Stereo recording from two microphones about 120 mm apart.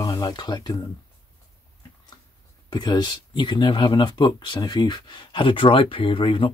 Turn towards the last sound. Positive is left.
turn(degrees=45)  # may be behind; listen again after turning